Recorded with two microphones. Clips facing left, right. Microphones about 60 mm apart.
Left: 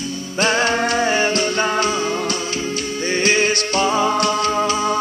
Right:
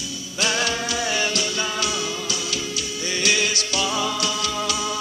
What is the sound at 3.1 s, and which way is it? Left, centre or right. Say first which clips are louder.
Music: left 6 dB; left.